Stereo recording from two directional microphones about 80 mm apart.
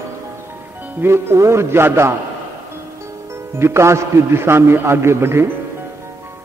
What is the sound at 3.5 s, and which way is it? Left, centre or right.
A man's voice, right.